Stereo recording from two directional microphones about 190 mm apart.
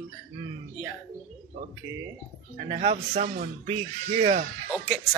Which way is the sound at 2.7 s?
35° right (ahead or behind).